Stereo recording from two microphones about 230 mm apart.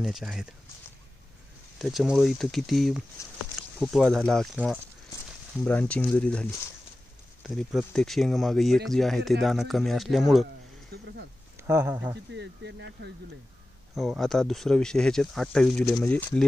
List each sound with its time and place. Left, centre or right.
0.0 s speech: centre
1.8 s speech: centre
3.2 s speech: centre
3.8 s speech: centre
10.9 s speech: right
11.6 s speech: centre
12.3 s speech: right
13.9 s speech: centre